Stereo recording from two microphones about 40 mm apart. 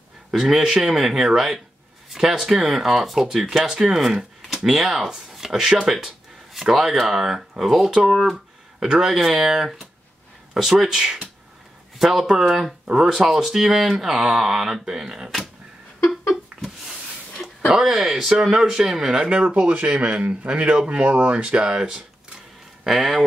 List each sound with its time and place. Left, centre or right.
0.3 s speech: centre
5.8 s a sound: centre
6.7 s speech: centre
7.9 s speech: right
8.7 s a sound: right
9.0 s speech: centre
16.6 s a sound: centre
17.7 s speech: centre
19.3 s speech: right
22.8 s speech: centre